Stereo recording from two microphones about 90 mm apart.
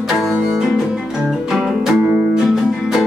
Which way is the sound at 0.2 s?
5° right (ahead or behind).